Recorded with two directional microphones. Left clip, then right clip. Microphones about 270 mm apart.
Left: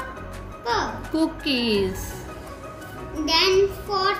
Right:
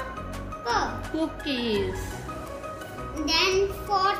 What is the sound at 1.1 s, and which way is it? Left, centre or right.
Music, left.